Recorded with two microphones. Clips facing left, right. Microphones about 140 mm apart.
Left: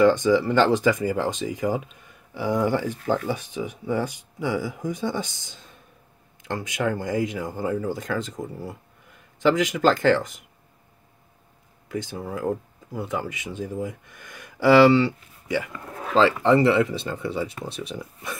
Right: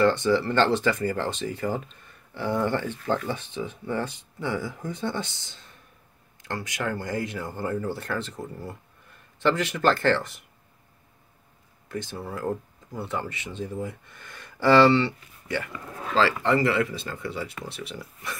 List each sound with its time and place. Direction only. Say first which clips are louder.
0.0 s speech: left 3 dB; 15° left (ahead or behind)
11.9 s speech: left 3 dB; 15° left (ahead or behind)